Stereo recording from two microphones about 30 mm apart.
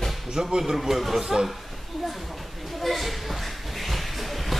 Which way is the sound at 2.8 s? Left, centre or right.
Centre.